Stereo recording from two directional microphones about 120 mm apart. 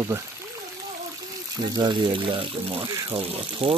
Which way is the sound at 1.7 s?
40° right (ahead or behind).